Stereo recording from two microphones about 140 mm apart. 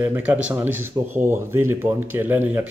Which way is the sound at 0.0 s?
15° right (ahead or behind).